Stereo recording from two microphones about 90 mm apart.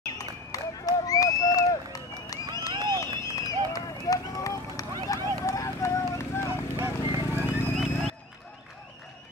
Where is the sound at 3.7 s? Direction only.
40° left (ahead or behind).